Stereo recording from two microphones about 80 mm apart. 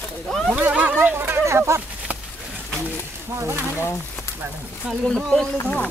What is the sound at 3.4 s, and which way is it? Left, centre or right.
Speech, right.